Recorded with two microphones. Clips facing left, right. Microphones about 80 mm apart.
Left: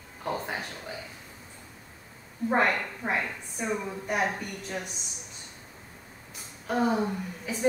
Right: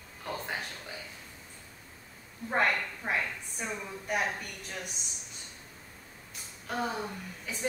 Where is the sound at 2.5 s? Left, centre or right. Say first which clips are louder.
Left 3 dB; centre.